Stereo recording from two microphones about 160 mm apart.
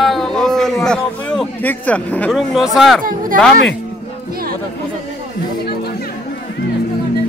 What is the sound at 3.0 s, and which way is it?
Speech, 60° right (ahead or behind).